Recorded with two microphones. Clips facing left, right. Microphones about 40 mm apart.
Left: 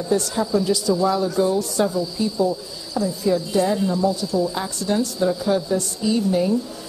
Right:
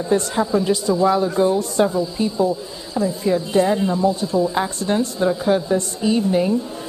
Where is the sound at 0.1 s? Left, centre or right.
Right.